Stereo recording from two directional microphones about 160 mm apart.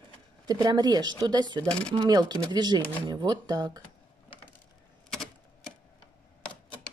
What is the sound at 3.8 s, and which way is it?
Computer keyboard, 10° left (ahead or behind).